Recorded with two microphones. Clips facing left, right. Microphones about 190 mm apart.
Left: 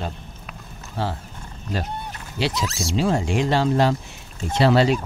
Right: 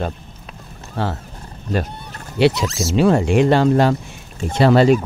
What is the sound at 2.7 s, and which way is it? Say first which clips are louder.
Speech: right 5 dB; centre (ahead or behind).